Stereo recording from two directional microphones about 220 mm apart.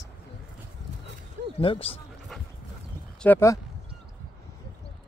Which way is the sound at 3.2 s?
10° left (ahead or behind).